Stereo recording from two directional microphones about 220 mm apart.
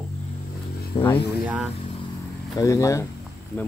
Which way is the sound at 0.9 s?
20° left (ahead or behind).